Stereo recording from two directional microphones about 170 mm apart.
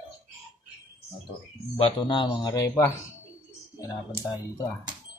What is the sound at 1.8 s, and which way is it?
Speech, 30° left (ahead or behind).